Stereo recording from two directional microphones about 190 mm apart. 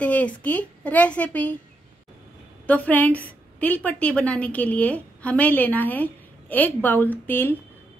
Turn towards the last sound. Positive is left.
turn(degrees=10)  # may be behind; listen again after turning